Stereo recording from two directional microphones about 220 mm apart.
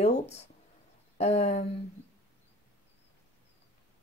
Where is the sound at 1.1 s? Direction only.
30° left (ahead or behind).